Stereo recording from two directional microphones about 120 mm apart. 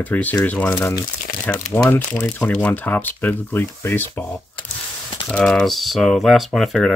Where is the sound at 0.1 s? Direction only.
15° left (ahead or behind).